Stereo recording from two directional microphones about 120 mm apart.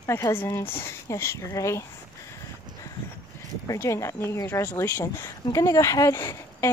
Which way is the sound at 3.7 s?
25° left (ahead or behind).